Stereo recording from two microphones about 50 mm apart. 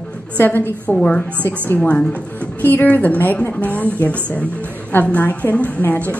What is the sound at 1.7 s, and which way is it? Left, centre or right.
Speech, left.